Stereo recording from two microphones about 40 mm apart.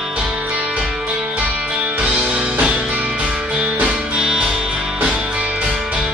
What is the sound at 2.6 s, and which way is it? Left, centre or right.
Music, right.